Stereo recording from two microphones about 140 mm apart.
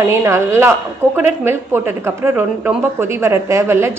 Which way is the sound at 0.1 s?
20° right (ahead or behind).